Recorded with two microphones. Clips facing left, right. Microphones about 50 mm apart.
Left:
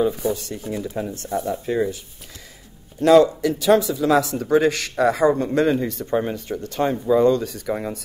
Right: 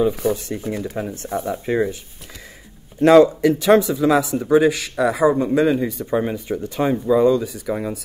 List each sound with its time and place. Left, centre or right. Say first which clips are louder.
0.3 s speech: right 3 dB; right
1.0 s speech: even; centre
3.0 s speech: right 2 dB; right
4.1 s speech: right 1 dB; centre